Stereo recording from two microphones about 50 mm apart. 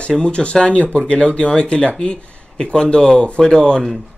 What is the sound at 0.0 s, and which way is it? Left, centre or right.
Speech, left.